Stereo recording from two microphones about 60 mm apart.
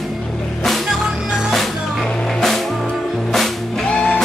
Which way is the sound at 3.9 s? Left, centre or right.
Centre.